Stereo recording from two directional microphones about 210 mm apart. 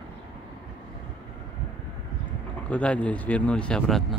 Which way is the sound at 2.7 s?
5° left (ahead or behind).